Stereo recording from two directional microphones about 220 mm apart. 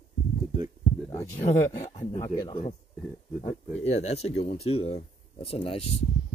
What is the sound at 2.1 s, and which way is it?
Speech, 15° left (ahead or behind).